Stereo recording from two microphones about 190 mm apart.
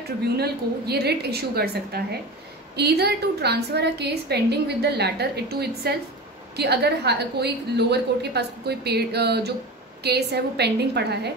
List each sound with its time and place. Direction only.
0.2 s a woman's voice: 60° right (ahead or behind)